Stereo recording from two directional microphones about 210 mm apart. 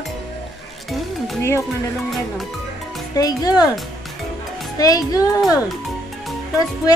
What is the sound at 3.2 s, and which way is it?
Music, 20° left (ahead or behind).